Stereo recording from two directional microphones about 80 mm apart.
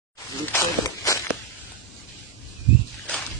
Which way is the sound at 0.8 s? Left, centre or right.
Left.